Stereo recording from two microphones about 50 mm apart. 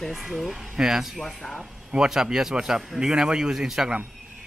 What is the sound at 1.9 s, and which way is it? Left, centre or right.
Speech, centre.